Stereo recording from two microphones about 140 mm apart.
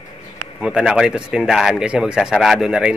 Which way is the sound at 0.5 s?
5° right (ahead or behind).